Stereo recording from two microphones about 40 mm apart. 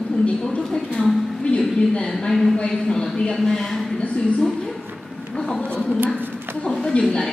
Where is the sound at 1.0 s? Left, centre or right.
Left.